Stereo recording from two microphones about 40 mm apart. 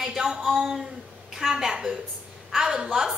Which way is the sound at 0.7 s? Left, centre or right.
Centre.